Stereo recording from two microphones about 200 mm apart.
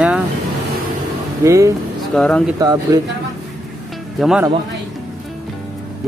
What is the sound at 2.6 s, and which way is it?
Speech, 20° right (ahead or behind).